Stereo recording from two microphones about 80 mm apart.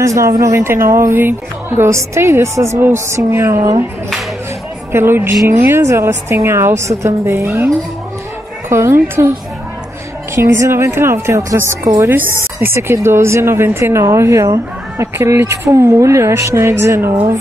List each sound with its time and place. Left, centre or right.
0.0 s speech: right
4.9 s speech: right
8.6 s a woman's voice: right
10.3 s speech: right